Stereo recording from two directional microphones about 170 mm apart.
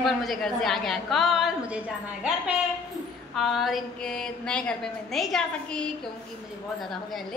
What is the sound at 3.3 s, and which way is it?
A woman's voice, centre (ahead or behind).